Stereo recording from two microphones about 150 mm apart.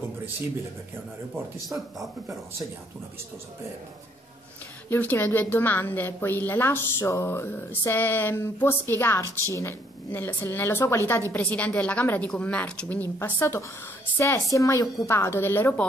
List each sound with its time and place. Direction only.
1.6 s speech: centre (ahead or behind)
4.8 s a woman's voice: 15° left (ahead or behind)